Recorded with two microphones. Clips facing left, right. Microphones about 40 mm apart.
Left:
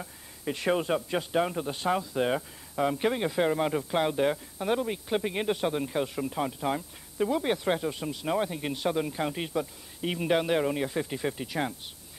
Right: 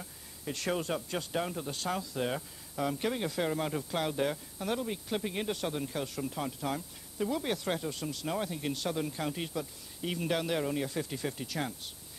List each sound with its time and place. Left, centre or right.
0.0 s speech: left